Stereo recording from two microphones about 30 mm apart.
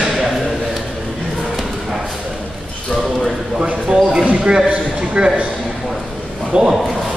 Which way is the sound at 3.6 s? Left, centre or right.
Right.